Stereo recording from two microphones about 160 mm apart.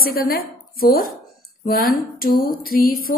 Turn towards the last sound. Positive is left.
turn(degrees=65)  # may be behind; listen again after turning